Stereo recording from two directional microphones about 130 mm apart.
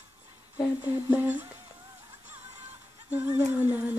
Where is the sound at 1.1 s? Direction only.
10° right (ahead or behind).